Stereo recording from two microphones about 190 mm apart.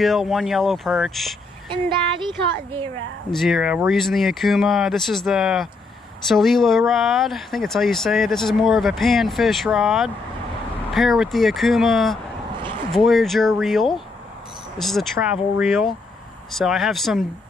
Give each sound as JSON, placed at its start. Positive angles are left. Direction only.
{"t": 0.0, "sound": "speech", "side_deg": 0}
{"t": 1.7, "sound": "speech", "side_deg": -25}
{"t": 3.3, "sound": "speech", "side_deg": 0}